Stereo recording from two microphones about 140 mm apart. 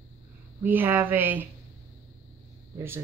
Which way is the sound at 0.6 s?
15° right (ahead or behind).